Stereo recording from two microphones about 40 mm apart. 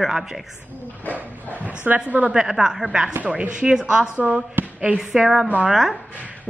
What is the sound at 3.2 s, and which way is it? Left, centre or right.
Speech, right.